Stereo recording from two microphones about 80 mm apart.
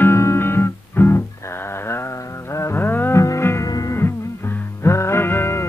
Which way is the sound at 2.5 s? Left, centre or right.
Left.